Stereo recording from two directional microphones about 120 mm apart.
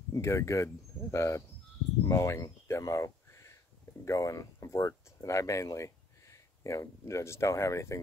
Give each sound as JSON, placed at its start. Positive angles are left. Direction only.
{"t": 0.1, "sound": "speech", "side_deg": 25}